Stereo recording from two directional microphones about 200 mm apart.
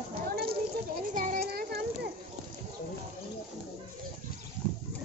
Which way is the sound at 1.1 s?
40° right (ahead or behind).